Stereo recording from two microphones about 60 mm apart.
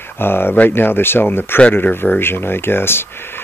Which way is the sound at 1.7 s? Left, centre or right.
Left.